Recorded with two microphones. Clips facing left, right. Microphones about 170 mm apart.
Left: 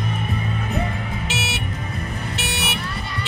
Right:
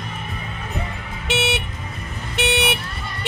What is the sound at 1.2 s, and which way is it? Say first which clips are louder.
Vehicle: right 10 dB; 60° right (ahead or behind).